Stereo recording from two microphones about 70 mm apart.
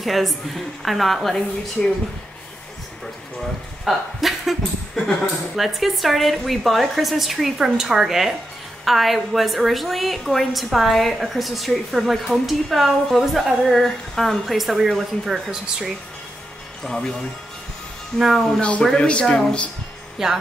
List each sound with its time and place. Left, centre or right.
0.0 s a woman's voice: centre
3.8 s a woman's voice: centre
5.6 s a woman's voice: centre
16.8 s a woman's voice: centre
18.2 s a woman's voice: centre
18.6 s speech: centre
20.2 s a woman's voice: centre